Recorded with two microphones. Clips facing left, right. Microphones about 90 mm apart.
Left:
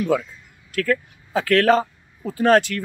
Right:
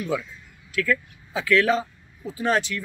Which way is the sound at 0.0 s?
55° left (ahead or behind).